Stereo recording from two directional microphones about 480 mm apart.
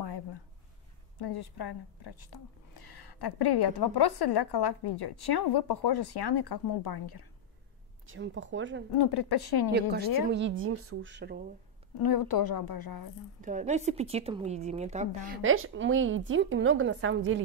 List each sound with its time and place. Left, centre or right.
1.1 s a woman's voice: left
8.1 s a woman's voice: right
8.9 s a woman's voice: left
9.7 s a woman's voice: centre
12.0 s a woman's voice: left
13.4 s a woman's voice: centre
15.4 s a woman's voice: right